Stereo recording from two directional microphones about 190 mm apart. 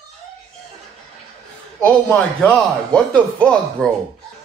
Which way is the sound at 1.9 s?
5° left (ahead or behind).